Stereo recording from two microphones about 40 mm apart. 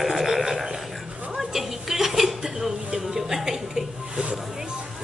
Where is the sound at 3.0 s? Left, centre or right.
Centre.